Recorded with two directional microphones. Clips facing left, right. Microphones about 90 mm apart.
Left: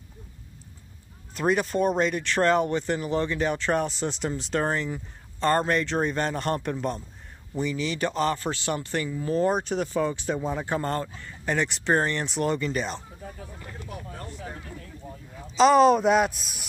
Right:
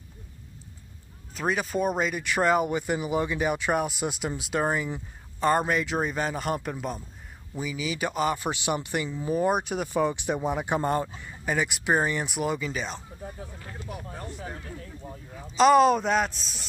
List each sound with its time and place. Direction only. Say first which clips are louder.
1.3 s speech: left 3 dB; centre (ahead or behind)
13.8 s speech: right 1 dB; 15° right (ahead or behind)
15.5 s speech: left 1 dB; centre (ahead or behind)